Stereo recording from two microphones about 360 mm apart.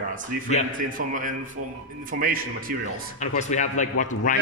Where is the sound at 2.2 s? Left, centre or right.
Right.